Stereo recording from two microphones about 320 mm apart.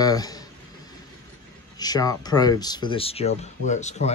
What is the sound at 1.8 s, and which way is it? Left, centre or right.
Speech, centre.